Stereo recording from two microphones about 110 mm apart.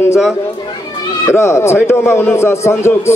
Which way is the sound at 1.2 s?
25° left (ahead or behind).